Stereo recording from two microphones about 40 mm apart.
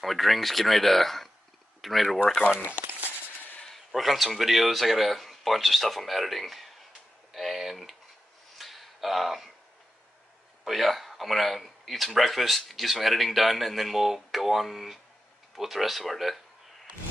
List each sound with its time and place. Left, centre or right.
0.0 s speech: centre
3.9 s speech: centre
7.3 s a sound: centre
10.6 s speech: centre